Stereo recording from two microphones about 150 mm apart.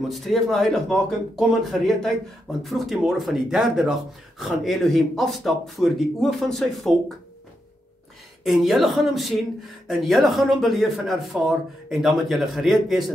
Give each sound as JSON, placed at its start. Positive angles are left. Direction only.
{"t": 0.1, "sound": "speech", "side_deg": 0}
{"t": 8.5, "sound": "speech", "side_deg": 0}